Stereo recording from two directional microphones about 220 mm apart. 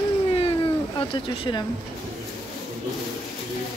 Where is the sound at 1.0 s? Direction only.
25° left (ahead or behind).